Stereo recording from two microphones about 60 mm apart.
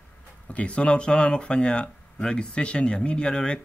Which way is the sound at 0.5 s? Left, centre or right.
Left.